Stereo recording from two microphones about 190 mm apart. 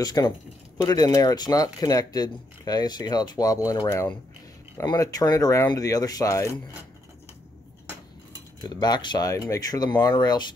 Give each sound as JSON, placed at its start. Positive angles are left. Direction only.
{"t": 0.0, "sound": "speech", "side_deg": 20}
{"t": 8.6, "sound": "speech", "side_deg": 20}